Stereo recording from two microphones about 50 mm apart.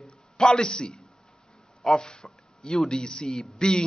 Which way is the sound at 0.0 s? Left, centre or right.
Centre.